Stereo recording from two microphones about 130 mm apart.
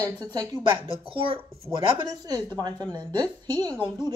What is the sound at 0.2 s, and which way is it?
Speech, 30° right (ahead or behind).